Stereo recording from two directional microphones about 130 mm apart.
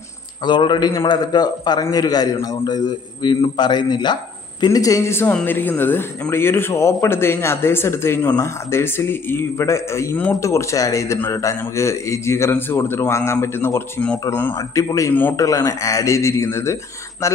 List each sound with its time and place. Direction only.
0.5 s a man's voice: 35° left (ahead or behind); by 14.5 s 15° left (ahead or behind)
14.8 s a man's voice: 25° left (ahead or behind)